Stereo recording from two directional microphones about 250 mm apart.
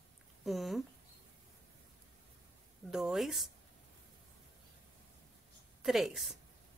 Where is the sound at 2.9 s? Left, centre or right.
Centre.